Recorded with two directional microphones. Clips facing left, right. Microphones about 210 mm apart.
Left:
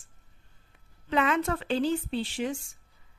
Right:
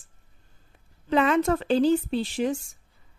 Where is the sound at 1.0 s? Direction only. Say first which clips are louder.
Right 5 dB; 35° right (ahead or behind).